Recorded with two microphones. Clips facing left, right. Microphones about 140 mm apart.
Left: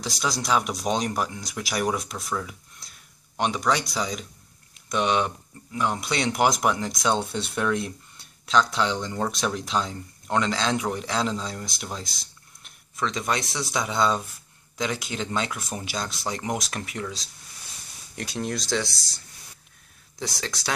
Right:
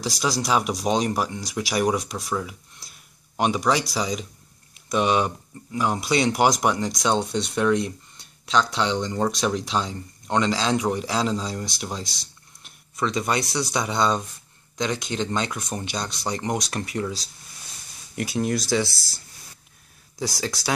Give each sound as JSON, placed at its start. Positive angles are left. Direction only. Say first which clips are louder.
{"t": 0.0, "sound": "speech", "louder": "right 3 dB", "side_deg": 0}